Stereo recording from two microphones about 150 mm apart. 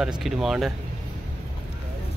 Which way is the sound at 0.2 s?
Centre (ahead or behind).